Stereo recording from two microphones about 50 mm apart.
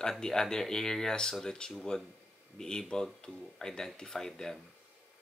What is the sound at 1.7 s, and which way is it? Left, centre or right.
Speech, centre.